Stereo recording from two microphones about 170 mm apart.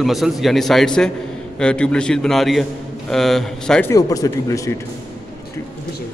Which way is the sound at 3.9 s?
20° left (ahead or behind).